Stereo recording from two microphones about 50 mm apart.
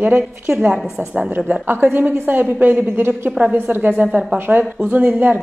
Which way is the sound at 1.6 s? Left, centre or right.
Right.